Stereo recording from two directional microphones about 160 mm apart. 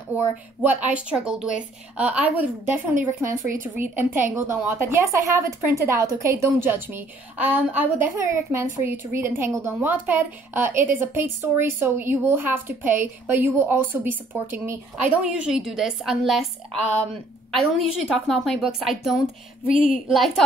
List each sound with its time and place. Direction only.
0.1 s a woman's voice: 10° right (ahead or behind)
19.7 s a woman's voice: 55° left (ahead or behind)
20.1 s a woman's voice: centre (ahead or behind)